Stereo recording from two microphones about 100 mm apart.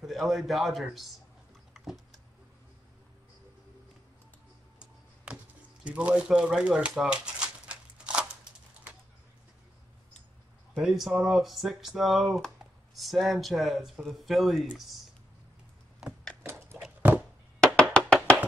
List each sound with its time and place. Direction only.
0.0 s speech: centre (ahead or behind)
4.7 s tick-tock: 10° right (ahead or behind)
5.9 s typewriter: 10° right (ahead or behind)
10.7 s speech: centre (ahead or behind)
16.4 s a sound: 25° right (ahead or behind)
17.1 s chop: 15° right (ahead or behind)
17.7 s music: 10° left (ahead or behind)